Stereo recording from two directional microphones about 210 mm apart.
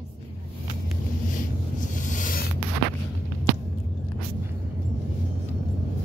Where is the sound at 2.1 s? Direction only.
40° left (ahead or behind).